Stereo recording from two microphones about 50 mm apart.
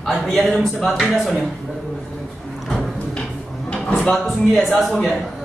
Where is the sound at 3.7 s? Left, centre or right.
Left.